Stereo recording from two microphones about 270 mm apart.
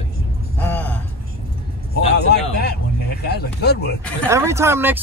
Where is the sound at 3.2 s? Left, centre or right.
Left.